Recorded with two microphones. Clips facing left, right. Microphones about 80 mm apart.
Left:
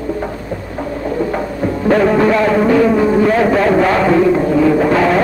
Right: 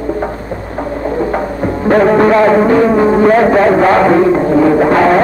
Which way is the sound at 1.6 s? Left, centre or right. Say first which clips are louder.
Right 3 dB; right.